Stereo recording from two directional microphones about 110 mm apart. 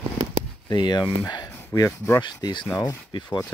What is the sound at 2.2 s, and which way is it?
Speech, 45° left (ahead or behind).